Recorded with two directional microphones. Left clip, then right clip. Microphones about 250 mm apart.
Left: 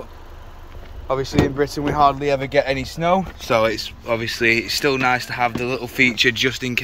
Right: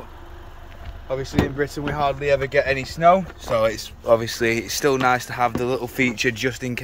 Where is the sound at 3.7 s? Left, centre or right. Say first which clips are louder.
Right 4 dB; right.